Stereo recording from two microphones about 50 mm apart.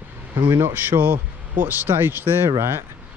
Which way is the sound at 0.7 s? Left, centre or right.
Right.